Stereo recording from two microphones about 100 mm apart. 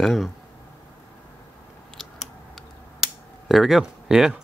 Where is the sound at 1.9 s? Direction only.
Centre (ahead or behind).